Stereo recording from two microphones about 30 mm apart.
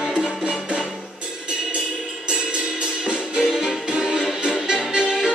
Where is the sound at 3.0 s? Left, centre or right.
Right.